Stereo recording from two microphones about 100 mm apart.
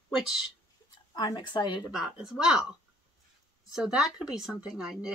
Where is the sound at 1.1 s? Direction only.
50° left (ahead or behind).